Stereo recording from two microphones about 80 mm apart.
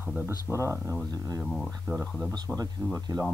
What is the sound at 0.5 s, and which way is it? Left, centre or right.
Speech, right.